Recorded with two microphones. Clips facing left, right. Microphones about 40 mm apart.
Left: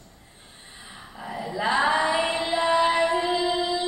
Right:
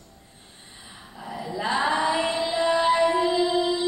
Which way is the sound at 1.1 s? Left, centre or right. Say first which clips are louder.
Left 1 dB; left.